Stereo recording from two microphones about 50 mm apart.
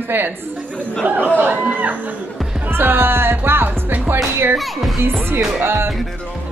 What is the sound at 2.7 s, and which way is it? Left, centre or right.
Speech, right.